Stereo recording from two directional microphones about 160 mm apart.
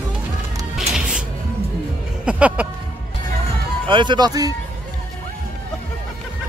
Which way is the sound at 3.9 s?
30° right (ahead or behind).